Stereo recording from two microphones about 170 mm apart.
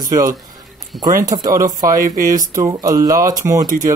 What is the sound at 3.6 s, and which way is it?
Speech, 50° right (ahead or behind).